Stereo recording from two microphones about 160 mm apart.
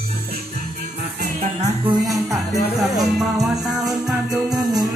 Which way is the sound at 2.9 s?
Centre (ahead or behind).